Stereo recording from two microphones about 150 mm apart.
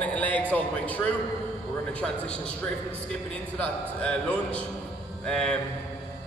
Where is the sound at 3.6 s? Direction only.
10° left (ahead or behind).